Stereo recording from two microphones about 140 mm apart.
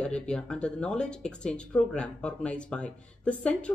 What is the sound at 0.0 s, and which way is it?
Speech, 5° left (ahead or behind).